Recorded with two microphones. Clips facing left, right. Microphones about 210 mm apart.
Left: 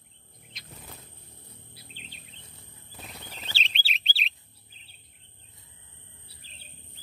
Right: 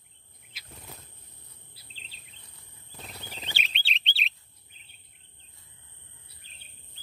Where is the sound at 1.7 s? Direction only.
30° right (ahead or behind).